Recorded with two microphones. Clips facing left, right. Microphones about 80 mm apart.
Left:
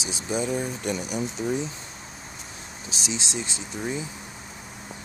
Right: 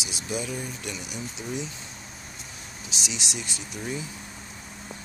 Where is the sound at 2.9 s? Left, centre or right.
Left.